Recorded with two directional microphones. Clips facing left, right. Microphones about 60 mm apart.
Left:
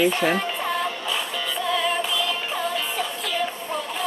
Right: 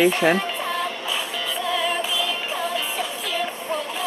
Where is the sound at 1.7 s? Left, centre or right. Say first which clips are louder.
Even; centre.